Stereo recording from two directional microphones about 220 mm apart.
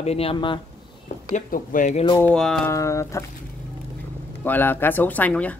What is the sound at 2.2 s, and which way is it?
Speech, 5° left (ahead or behind).